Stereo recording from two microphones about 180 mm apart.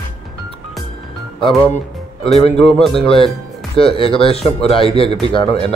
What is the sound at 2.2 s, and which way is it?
Speech, 35° left (ahead or behind).